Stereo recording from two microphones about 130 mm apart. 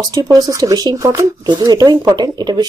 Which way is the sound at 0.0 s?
30° right (ahead or behind).